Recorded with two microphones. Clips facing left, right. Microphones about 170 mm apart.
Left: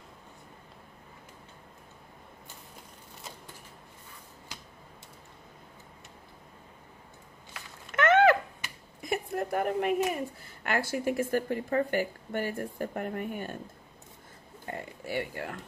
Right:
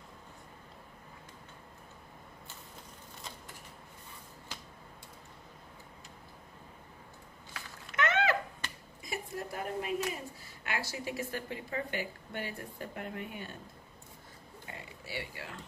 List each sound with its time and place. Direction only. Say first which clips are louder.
7.9 s a sound: left 9 dB; 55° left (ahead or behind)
9.0 s a woman's voice: left 8 dB; 55° left (ahead or behind)
14.7 s speech: left 9 dB; 50° left (ahead or behind)